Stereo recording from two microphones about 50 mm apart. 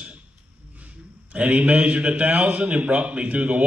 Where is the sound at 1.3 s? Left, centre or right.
Right.